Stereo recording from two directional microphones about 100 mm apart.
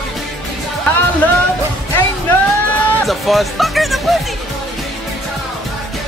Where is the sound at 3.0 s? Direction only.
Centre (ahead or behind).